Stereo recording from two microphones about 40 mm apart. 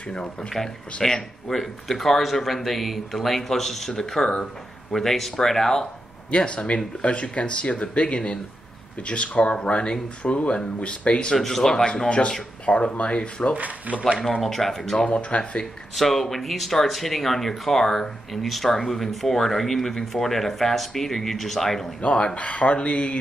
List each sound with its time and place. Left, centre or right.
0.1 s speech: left
1.0 s speech: centre
6.3 s speech: left
11.3 s speech: centre; by 13.5 s left
13.6 s speech: right
14.4 s speech: centre
15.0 s speech: left
15.6 s speech: centre
22.0 s speech: left